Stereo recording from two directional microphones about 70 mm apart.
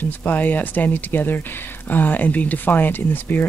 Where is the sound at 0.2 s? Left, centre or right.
Left.